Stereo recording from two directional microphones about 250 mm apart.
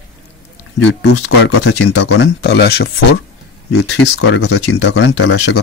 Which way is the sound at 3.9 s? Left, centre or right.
Left.